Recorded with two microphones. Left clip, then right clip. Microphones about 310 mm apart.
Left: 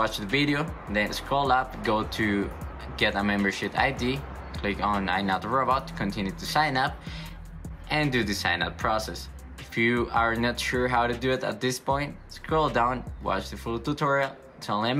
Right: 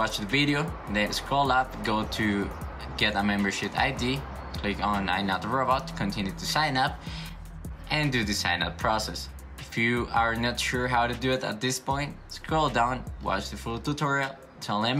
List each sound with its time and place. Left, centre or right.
0.0 s speech: centre
7.9 s speech: centre